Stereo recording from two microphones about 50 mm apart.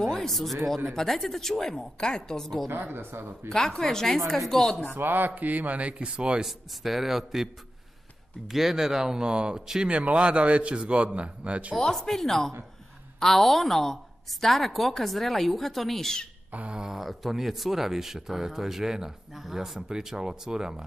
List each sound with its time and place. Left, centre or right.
0.0 s a woman's voice: centre
2.9 s speech: right
3.4 s a woman's voice: centre
4.9 s speech: right
6.4 s speech: centre
8.5 s speech: centre; by 11.7 s right
11.8 s a woman's voice: centre
16.7 s speech: centre
17.0 s speech: centre